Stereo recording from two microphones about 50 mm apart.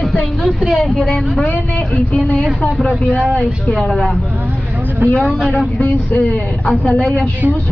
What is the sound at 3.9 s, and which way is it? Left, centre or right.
Speech, centre.